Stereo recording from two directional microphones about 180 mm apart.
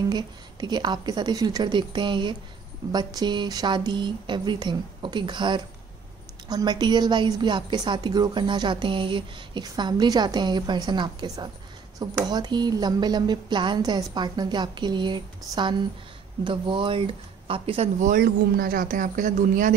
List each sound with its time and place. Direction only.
0.1 s a woman's voice: 25° right (ahead or behind)
18.0 s speech: 55° right (ahead or behind)